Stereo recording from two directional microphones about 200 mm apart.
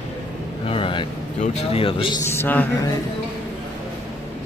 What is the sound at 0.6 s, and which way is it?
Speech, 25° left (ahead or behind).